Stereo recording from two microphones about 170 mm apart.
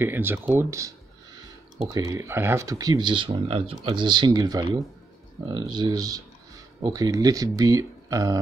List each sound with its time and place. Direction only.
0.0 s speech: 10° right (ahead or behind)